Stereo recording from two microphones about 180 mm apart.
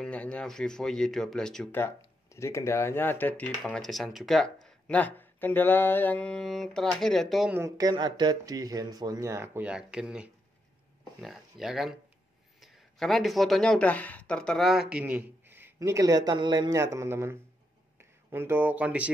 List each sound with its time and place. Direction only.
0.0 s speech: 5° left (ahead or behind)
2.3 s speech: 15° left (ahead or behind); by 7.5 s centre (ahead or behind)
7.5 s speech: 15° right (ahead or behind)